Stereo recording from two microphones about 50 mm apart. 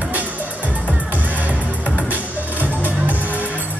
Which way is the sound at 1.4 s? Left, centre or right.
Right.